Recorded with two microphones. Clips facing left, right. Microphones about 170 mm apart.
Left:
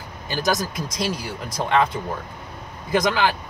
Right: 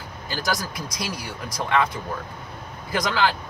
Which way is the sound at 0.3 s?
20° left (ahead or behind).